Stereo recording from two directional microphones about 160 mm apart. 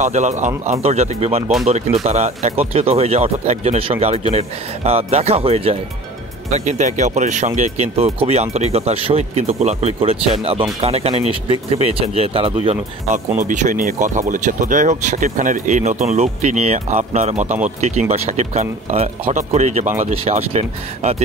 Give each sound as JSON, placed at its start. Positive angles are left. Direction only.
{"t": 0.0, "sound": "speech", "side_deg": -45}
{"t": 13.4, "sound": "speech", "side_deg": -50}